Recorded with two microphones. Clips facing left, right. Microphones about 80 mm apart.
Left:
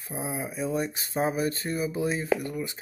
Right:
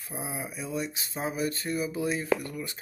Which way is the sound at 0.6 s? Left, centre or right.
Left.